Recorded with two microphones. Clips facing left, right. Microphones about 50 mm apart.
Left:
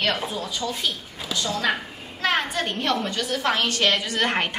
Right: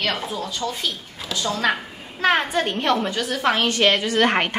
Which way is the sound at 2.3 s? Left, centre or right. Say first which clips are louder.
Right 3 dB; centre.